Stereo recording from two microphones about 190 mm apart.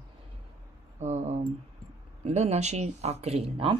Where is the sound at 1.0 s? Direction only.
35° right (ahead or behind).